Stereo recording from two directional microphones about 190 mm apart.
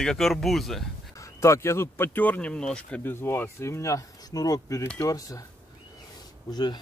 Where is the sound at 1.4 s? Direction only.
15° left (ahead or behind).